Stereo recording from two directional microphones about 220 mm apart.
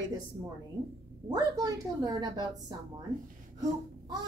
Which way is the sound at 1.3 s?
15° right (ahead or behind).